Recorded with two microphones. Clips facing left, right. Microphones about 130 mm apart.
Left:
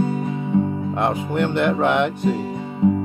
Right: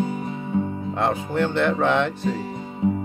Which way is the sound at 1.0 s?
15° left (ahead or behind).